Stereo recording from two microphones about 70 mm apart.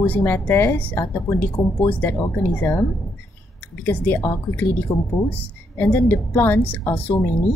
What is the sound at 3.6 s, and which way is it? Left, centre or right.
Speech, left.